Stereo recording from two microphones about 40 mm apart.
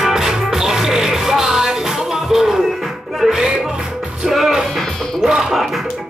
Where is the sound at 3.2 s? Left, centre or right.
Centre.